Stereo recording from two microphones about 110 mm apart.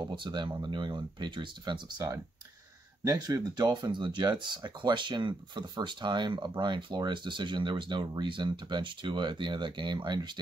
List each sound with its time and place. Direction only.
0.0 s speech: 45° right (ahead or behind)